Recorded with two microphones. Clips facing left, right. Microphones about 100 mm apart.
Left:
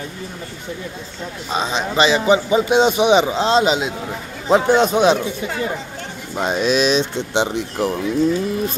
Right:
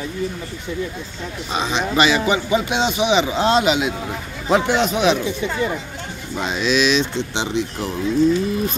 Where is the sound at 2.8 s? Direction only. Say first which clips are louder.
Left 4 dB; 50° left (ahead or behind).